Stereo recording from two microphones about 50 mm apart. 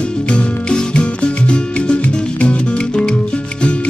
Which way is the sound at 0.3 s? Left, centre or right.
Left.